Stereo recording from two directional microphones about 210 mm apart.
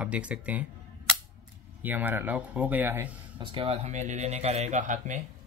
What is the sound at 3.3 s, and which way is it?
A man's voice, 25° right (ahead or behind).